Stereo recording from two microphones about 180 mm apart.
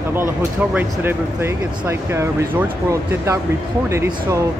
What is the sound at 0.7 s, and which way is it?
Speech, 10° right (ahead or behind).